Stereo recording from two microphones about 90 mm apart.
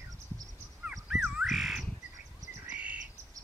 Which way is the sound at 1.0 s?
5° right (ahead or behind).